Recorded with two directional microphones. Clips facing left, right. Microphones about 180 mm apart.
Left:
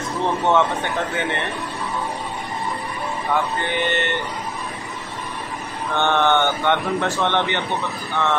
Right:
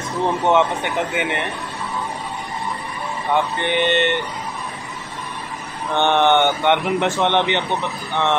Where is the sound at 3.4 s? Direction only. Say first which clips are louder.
Right 6 dB; 20° right (ahead or behind).